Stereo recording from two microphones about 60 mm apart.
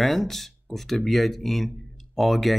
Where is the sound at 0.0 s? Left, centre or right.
Centre.